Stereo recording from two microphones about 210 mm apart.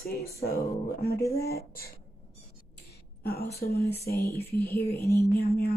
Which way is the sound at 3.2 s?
50° left (ahead or behind).